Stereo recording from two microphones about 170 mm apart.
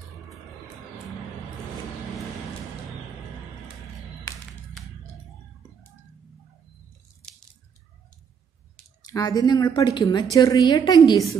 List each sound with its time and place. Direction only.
9.0 s a woman's voice: 20° left (ahead or behind)